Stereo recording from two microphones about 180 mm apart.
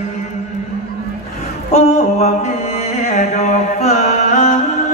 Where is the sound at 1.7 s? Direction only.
40° left (ahead or behind).